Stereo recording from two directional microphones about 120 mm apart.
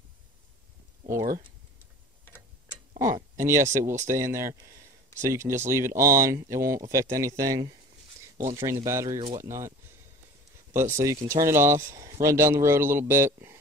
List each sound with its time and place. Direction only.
3.0 s speech: 30° right (ahead or behind)